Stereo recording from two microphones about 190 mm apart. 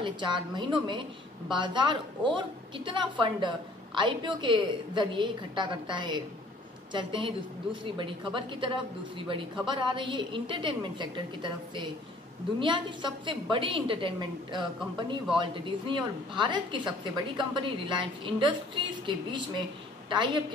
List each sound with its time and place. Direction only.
0.0 s a woman's voice: 25° right (ahead or behind)